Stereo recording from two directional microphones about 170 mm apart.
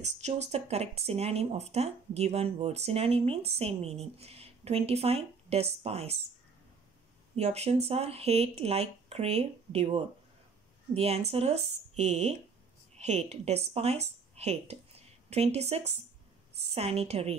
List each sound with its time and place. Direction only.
0.0 s speech: 40° right (ahead or behind)
7.3 s speech: 40° right (ahead or behind)